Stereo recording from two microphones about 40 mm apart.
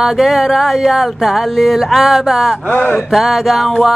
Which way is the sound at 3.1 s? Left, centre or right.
Centre.